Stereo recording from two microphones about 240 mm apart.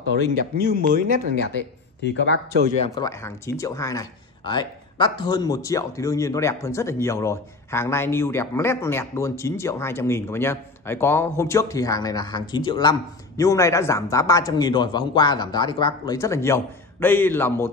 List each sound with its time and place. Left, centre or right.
0.4 s speech: right
2.0 s speech: left
3.0 s speech: centre